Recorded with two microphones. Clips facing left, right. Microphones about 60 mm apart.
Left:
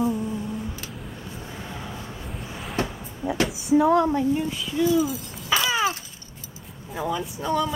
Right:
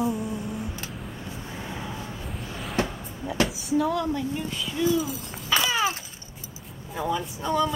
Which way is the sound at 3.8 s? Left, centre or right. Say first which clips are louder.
Left 6 dB; left.